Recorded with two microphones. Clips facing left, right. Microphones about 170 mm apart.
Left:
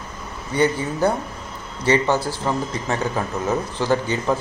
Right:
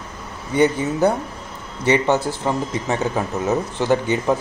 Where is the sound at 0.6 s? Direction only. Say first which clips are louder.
Right 3 dB; 20° right (ahead or behind).